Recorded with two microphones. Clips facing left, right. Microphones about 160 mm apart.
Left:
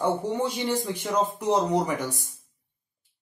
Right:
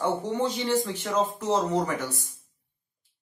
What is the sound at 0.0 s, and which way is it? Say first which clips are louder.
Speech: left 1 dB; 10° left (ahead or behind).